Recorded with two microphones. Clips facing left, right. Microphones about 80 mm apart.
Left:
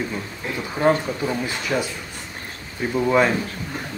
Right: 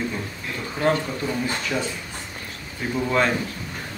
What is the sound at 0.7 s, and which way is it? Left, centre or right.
Speech, left.